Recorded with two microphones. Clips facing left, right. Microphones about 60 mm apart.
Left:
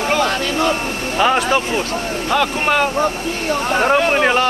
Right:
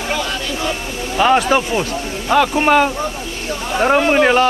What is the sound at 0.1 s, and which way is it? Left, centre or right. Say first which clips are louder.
Vehicle: left 4 dB; left.